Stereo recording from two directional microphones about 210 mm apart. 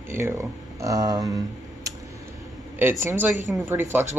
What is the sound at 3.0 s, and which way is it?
Speech, 10° right (ahead or behind).